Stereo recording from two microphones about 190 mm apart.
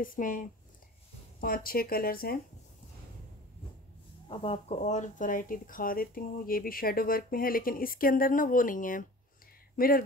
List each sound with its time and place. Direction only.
0.0 s speech: 45° left (ahead or behind)
4.3 s speech: 30° left (ahead or behind); by 10.0 s 50° left (ahead or behind)